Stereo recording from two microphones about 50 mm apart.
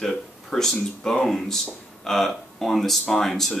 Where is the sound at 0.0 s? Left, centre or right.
Centre.